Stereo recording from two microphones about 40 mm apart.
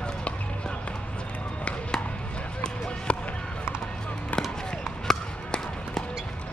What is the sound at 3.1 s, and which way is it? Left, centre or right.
Basketball bounce, left.